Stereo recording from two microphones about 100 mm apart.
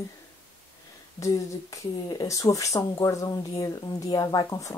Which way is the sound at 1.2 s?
35° left (ahead or behind).